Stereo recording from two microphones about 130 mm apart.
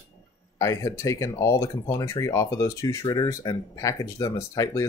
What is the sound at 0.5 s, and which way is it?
Speech, 25° left (ahead or behind).